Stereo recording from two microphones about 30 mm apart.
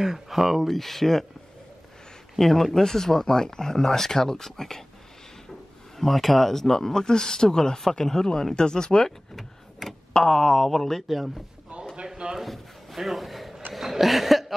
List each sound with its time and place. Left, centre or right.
0.0 s speech: centre
0.7 s speech: centre
2.3 s speech: centre
5.9 s speech: centre; by 9.1 s left
9.3 s power windows: centre
10.1 s speech: left
10.5 s speech: centre
11.1 s speech: centre
11.7 s a sound: right
12.4 s a sound: centre